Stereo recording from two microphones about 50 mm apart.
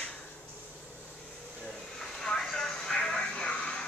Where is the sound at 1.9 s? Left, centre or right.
Centre.